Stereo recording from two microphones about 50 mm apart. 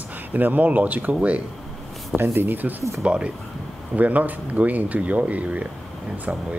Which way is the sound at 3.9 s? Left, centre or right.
Right.